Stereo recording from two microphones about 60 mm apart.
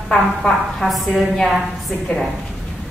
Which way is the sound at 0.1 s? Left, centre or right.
Centre.